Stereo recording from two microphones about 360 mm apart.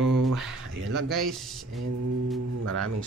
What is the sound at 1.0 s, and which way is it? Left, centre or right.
Speech, centre.